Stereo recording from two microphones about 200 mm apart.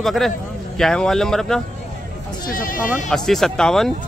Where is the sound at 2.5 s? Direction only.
45° left (ahead or behind).